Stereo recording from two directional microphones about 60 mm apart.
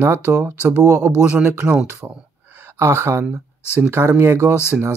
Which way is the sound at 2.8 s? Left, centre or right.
Right.